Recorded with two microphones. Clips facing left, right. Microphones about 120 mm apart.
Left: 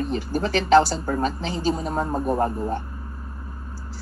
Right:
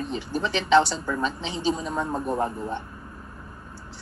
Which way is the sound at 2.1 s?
5° left (ahead or behind).